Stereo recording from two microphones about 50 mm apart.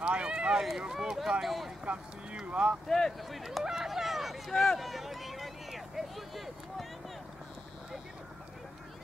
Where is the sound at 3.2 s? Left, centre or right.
Centre.